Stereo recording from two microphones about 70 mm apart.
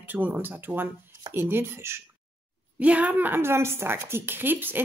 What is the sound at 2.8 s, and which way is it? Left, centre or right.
A woman's voice, right.